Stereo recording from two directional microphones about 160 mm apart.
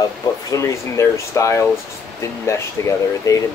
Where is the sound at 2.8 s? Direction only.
15° left (ahead or behind).